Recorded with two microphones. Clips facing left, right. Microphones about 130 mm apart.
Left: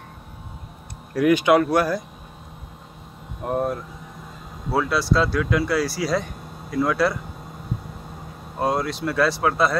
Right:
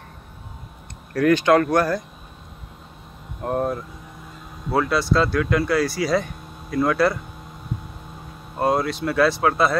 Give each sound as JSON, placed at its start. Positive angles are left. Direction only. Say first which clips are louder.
{"t": 1.1, "sound": "speech", "louder": "even", "side_deg": 10}
{"t": 3.4, "sound": "speech", "louder": "right 1 dB", "side_deg": 0}
{"t": 8.5, "sound": "speech", "louder": "right 2 dB", "side_deg": 0}